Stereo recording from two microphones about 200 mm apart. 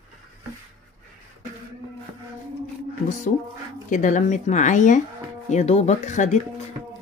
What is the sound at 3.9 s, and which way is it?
A woman's voice, 40° left (ahead or behind).